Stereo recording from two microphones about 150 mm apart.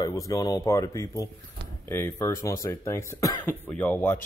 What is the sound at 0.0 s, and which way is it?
Speech, 20° left (ahead or behind).